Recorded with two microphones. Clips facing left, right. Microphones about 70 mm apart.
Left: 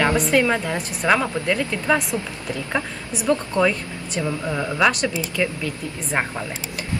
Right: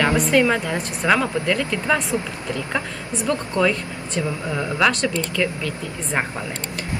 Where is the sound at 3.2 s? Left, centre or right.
Centre.